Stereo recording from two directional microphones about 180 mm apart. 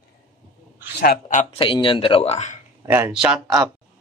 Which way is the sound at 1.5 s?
30° left (ahead or behind).